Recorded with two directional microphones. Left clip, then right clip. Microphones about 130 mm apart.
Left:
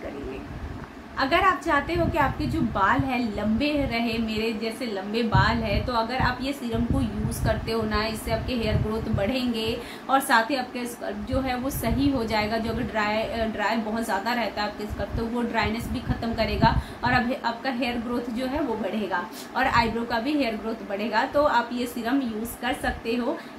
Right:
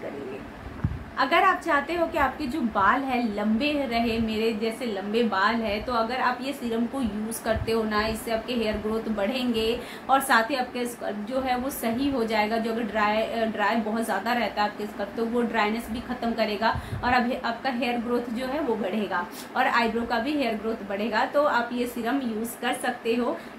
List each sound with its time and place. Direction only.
1.1 s a woman's voice: 5° right (ahead or behind)
19.0 s a woman's voice: 5° right (ahead or behind)